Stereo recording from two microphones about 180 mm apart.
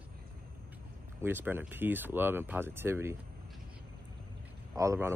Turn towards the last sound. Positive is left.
turn(degrees=-15)  # may be behind; listen again after turning